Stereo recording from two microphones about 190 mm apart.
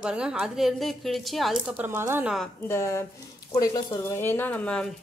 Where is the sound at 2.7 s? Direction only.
15° left (ahead or behind).